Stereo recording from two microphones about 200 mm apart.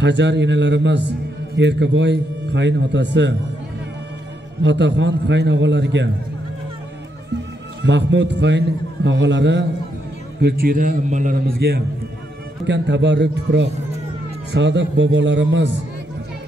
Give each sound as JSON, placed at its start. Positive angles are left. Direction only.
{"t": 0.0, "sound": "a man's voice", "side_deg": -60}
{"t": 4.6, "sound": "a man's voice", "side_deg": -65}
{"t": 7.8, "sound": "a man's voice", "side_deg": -60}
{"t": 10.4, "sound": "a man's voice", "side_deg": -45}
{"t": 12.6, "sound": "a man's voice", "side_deg": -60}